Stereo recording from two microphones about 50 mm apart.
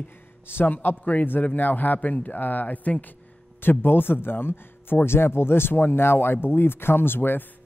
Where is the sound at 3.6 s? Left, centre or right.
Left.